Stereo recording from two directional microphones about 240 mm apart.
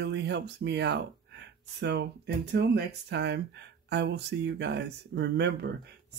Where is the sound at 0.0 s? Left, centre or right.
Right.